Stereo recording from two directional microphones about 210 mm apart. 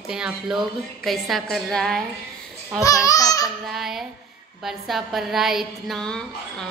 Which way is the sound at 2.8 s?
15° left (ahead or behind).